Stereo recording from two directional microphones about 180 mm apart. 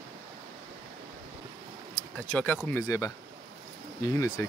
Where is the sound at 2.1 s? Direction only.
10° left (ahead or behind).